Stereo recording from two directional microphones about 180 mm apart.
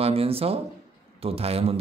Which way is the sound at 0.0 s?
30° right (ahead or behind).